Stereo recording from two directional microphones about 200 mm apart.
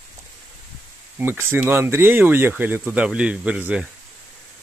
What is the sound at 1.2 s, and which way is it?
Speech, 10° right (ahead or behind).